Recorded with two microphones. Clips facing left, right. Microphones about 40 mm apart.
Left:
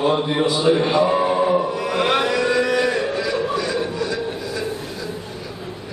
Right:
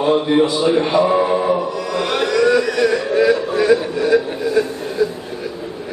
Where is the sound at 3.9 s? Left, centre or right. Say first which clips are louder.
Right 8 dB; right.